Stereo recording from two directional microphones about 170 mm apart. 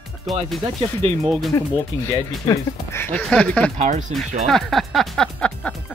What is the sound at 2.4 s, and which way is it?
Speech, 15° left (ahead or behind).